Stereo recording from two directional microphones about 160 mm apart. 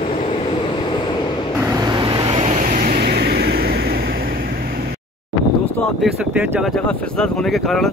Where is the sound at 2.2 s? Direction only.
40° right (ahead or behind); by 4.5 s 65° right (ahead or behind).